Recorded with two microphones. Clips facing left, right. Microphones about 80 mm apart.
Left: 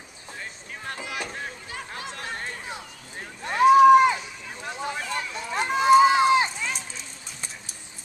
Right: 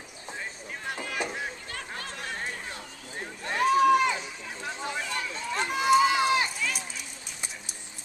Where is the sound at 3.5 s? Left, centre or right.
Centre.